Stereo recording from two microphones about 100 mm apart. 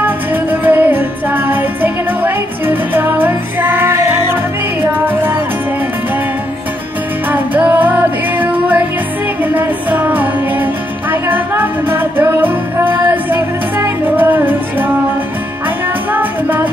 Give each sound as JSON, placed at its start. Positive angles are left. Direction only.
{"t": 0.0, "sound": "music", "side_deg": -20}
{"t": 7.2, "sound": "music", "side_deg": -15}
{"t": 16.1, "sound": "music", "side_deg": -20}